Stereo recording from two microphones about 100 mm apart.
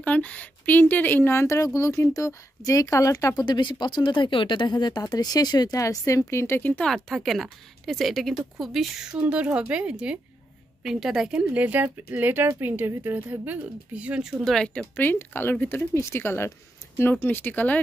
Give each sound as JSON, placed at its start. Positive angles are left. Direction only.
{"t": 0.0, "sound": "speech", "side_deg": 15}
{"t": 3.3, "sound": "speech", "side_deg": 50}
{"t": 6.9, "sound": "speech", "side_deg": 0}
{"t": 14.4, "sound": "speech", "side_deg": 5}
{"t": 15.0, "sound": "speech", "side_deg": 20}